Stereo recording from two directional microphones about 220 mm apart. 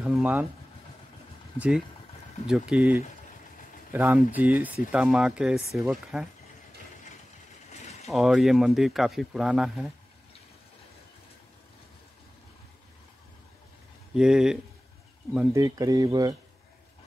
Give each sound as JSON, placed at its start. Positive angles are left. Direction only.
{"t": 0.0, "sound": "speech", "side_deg": -5}
{"t": 2.4, "sound": "speech", "side_deg": -5}
{"t": 7.7, "sound": "a sound", "side_deg": 30}
{"t": 8.1, "sound": "speech", "side_deg": 0}
{"t": 14.1, "sound": "speech", "side_deg": -5}
{"t": 15.3, "sound": "speech", "side_deg": -15}